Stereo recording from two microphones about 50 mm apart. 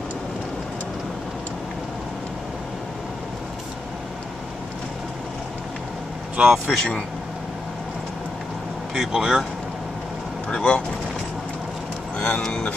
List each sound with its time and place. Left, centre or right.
6.4 s speech: centre
8.9 s speech: centre
10.5 s speech: left
12.2 s speech: centre